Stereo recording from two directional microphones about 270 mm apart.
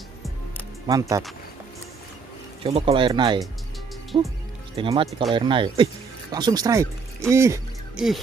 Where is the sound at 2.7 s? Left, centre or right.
Right.